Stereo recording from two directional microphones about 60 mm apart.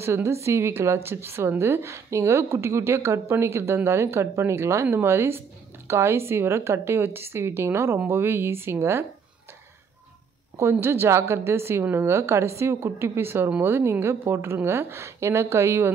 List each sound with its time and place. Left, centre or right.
0.0 s a woman's voice: right
10.6 s a woman's voice: right